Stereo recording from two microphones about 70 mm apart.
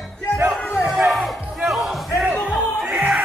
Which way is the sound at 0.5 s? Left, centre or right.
Centre.